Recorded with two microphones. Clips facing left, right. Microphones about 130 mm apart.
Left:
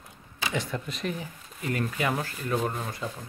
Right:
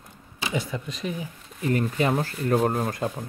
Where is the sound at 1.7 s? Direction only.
30° right (ahead or behind); by 3.1 s 50° right (ahead or behind).